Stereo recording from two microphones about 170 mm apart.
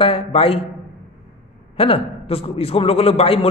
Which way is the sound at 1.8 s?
35° left (ahead or behind).